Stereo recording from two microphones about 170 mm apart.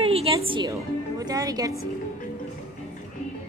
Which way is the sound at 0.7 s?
20° right (ahead or behind).